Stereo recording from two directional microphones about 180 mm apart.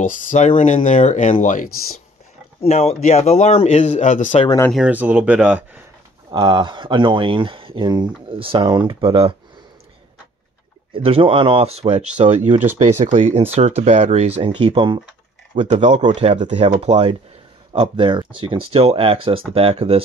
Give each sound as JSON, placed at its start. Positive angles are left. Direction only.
{"t": 0.1, "sound": "speech", "side_deg": 45}
{"t": 2.6, "sound": "speech", "side_deg": 35}
{"t": 4.6, "sound": "speech", "side_deg": -5}
{"t": 6.3, "sound": "speech", "side_deg": -25}
{"t": 10.9, "sound": "speech", "side_deg": -30}